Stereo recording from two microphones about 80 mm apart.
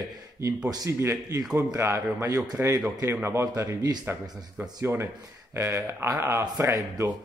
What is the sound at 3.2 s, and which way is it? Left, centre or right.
Speech, right.